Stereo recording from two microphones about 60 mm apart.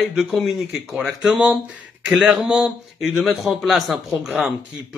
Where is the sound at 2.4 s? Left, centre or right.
Centre.